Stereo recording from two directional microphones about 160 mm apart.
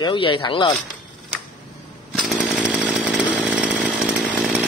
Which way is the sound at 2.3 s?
Centre (ahead or behind).